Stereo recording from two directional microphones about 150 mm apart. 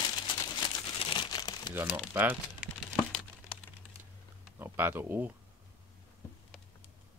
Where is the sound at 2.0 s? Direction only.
10° right (ahead or behind).